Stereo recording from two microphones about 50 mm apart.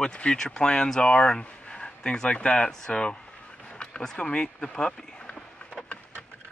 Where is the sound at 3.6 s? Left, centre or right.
Centre.